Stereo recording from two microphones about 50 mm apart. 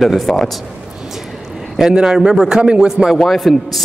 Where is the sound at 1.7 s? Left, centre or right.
Centre.